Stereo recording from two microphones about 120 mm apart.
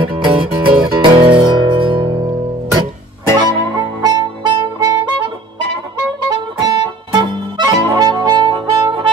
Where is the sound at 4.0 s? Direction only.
35° right (ahead or behind).